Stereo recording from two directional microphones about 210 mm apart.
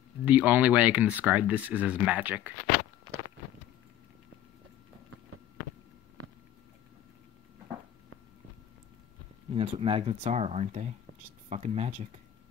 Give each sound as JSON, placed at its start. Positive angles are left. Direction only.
{"t": 0.2, "sound": "speech", "side_deg": -5}
{"t": 9.5, "sound": "speech", "side_deg": -25}